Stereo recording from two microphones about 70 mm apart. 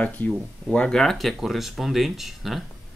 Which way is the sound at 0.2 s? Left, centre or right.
Left.